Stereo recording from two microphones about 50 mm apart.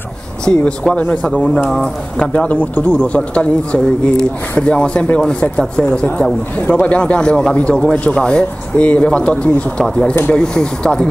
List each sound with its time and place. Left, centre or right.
0.5 s speech: left